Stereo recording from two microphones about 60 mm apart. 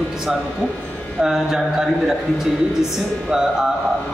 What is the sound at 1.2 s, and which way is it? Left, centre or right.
A man's voice, centre.